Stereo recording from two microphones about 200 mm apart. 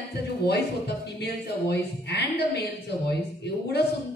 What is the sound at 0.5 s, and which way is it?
Speech, 55° left (ahead or behind).